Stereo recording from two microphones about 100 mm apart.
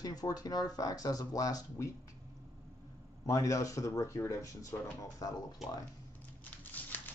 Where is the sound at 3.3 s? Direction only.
35° left (ahead or behind).